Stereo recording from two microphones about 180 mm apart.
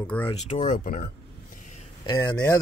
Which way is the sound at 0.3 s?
30° left (ahead or behind).